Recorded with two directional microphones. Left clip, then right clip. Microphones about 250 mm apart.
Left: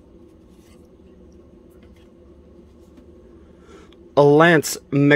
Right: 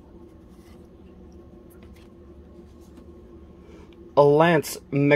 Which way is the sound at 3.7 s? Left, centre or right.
Left.